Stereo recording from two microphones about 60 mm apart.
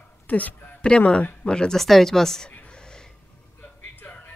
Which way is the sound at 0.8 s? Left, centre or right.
Centre.